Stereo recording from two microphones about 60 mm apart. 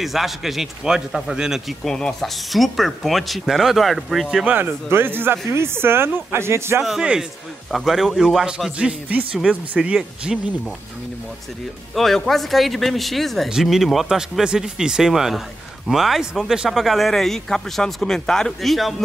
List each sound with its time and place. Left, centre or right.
0.0 s speech: centre
1.9 s speech: centre
4.5 s speech: right
4.8 s speech: right
6.8 s speech: centre
8.7 s speech: centre
11.9 s speech: centre